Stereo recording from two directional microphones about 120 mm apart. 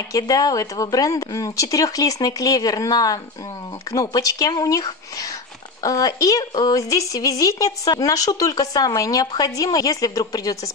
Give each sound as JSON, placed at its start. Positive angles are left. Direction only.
{"t": 0.1, "sound": "a woman's voice", "side_deg": 30}